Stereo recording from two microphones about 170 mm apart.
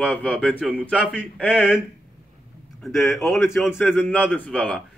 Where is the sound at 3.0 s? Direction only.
15° left (ahead or behind).